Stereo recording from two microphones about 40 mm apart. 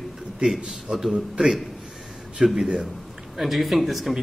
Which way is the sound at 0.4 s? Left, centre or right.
Right.